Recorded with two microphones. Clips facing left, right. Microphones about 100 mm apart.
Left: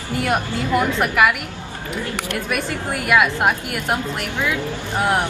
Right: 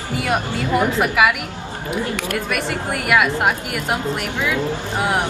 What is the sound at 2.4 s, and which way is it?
A woman's voice, 5° left (ahead or behind).